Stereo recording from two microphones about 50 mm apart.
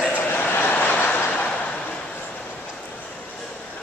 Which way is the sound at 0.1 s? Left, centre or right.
Left.